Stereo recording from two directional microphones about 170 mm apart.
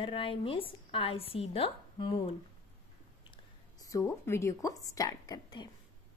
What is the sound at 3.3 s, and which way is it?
Speech, 20° left (ahead or behind).